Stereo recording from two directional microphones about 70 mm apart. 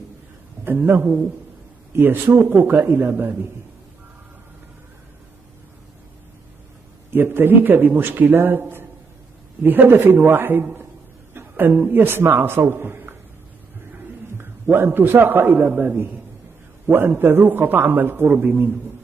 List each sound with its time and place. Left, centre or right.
0.7 s speech: right
7.1 s a man's voice: right
14.4 s a man's voice: right